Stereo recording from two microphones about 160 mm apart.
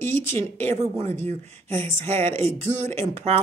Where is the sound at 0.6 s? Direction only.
40° right (ahead or behind).